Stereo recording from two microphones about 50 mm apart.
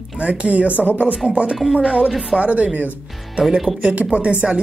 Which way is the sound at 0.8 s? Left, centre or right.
Left.